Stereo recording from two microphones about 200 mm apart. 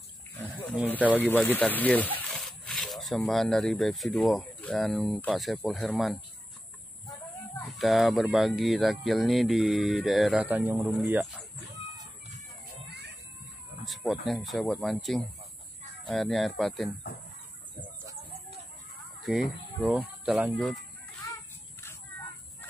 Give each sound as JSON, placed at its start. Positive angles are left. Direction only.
{"t": 1.1, "sound": "speech", "side_deg": 10}
{"t": 7.8, "sound": "speech", "side_deg": 0}
{"t": 12.8, "sound": "a sound", "side_deg": -55}
{"t": 13.8, "sound": "speech", "side_deg": 0}
{"t": 19.2, "sound": "speech", "side_deg": 0}
{"t": 20.5, "sound": "speech", "side_deg": 5}